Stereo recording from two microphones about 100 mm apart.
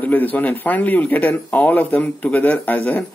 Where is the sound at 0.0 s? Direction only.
15° left (ahead or behind).